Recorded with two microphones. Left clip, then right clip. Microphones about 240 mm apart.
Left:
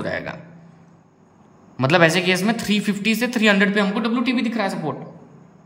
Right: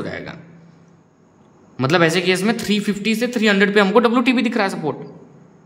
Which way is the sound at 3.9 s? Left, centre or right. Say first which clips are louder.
Right 8 dB; centre.